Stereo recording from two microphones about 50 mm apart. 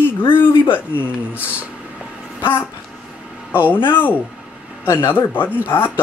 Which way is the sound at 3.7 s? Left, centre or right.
Left.